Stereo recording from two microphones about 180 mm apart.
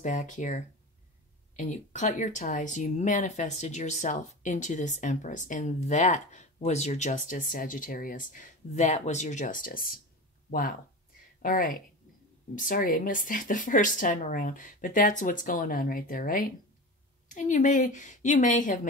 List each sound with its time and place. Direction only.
0.0 s speech: 45° left (ahead or behind)
11.4 s speech: 50° left (ahead or behind)